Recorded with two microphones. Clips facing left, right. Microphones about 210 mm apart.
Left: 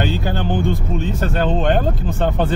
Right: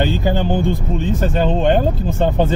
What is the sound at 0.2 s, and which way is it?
Speech, 15° right (ahead or behind).